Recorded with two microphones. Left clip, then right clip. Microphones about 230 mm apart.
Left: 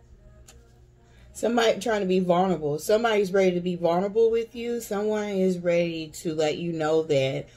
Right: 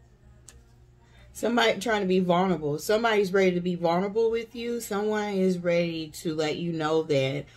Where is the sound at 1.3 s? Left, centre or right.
Centre.